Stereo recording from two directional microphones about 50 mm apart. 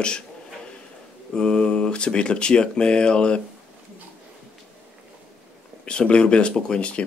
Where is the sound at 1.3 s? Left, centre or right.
Centre.